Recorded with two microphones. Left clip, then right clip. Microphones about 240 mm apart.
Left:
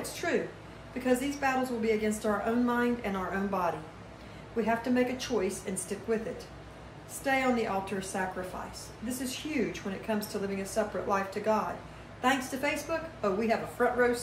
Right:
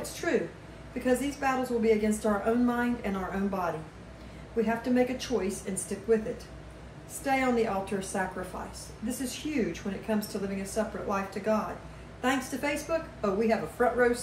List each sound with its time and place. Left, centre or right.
0.0 s a sound: centre
1.0 s a woman's voice: centre
4.6 s a woman's voice: centre